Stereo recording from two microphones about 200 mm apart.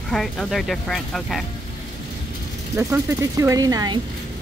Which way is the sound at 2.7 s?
15° right (ahead or behind).